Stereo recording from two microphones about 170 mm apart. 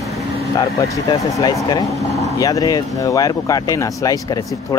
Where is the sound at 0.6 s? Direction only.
20° left (ahead or behind).